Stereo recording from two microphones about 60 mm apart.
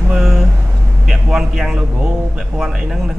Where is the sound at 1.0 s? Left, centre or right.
Centre.